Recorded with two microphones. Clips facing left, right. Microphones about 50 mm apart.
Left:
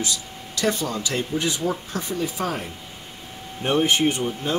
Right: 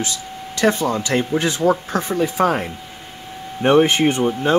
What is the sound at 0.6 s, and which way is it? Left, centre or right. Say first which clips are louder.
Speech: right 6 dB; right.